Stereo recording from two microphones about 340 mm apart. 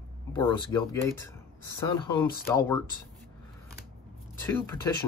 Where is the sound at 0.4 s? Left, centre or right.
Centre.